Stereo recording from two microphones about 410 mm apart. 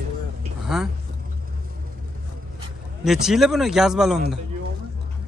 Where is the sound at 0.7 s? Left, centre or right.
Centre.